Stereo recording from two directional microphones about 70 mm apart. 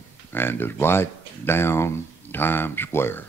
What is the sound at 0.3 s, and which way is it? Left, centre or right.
Speech, left.